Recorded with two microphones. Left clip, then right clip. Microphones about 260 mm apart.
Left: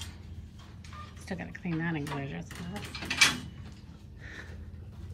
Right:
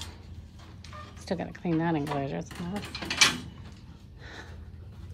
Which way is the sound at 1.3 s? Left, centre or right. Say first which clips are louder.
Right 7 dB; centre.